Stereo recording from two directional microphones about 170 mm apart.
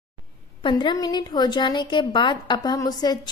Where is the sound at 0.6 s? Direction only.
30° left (ahead or behind).